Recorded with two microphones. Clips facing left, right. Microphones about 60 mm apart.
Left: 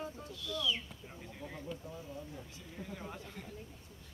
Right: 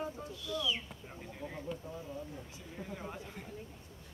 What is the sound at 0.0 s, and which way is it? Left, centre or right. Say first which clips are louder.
Speech: right 3 dB; right.